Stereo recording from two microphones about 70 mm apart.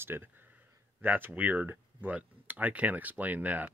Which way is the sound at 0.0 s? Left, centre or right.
Right.